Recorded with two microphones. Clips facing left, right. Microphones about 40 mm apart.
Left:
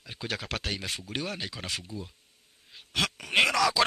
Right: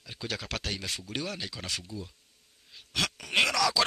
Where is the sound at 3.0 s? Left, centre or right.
Centre.